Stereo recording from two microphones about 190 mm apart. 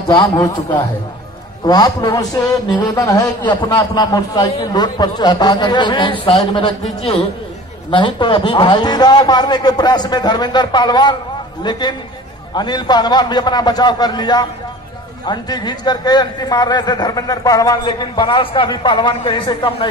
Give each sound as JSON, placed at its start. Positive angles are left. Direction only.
{"t": 0.1, "sound": "a man's voice", "side_deg": 20}
{"t": 12.5, "sound": "a man's voice", "side_deg": 20}